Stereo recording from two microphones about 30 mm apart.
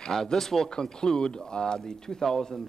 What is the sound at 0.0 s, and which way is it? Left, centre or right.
Speech, centre.